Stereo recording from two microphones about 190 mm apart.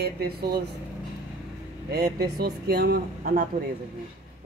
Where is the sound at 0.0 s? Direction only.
55° right (ahead or behind).